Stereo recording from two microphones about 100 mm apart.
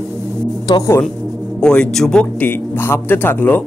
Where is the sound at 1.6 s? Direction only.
10° left (ahead or behind).